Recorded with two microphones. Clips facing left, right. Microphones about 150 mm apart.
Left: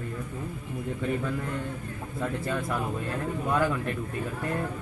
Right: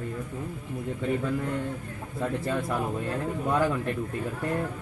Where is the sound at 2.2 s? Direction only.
30° right (ahead or behind).